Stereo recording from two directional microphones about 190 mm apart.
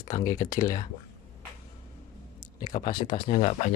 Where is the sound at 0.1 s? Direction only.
20° left (ahead or behind).